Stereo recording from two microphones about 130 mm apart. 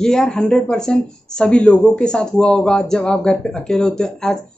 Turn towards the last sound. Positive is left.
turn(degrees=5)  # may be behind; listen again after turning